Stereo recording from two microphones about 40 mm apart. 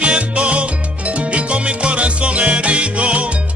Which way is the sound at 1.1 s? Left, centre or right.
Right.